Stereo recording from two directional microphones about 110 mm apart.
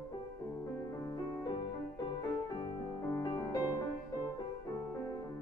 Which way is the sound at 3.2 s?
30° left (ahead or behind).